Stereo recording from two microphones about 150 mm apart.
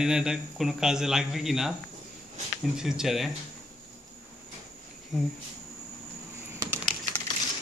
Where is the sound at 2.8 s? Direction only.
5° right (ahead or behind).